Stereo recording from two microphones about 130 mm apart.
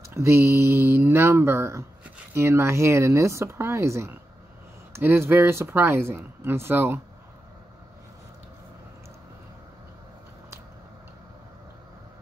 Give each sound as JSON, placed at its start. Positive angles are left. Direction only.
{"t": 0.1, "sound": "speech", "side_deg": -20}